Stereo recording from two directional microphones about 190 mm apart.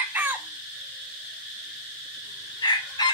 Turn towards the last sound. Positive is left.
turn(degrees=20)  # may be behind; listen again after turning